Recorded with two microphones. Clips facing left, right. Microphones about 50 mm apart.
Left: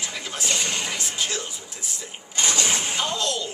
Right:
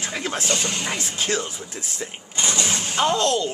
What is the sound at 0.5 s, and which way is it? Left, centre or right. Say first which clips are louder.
Speech: right 1 dB; centre.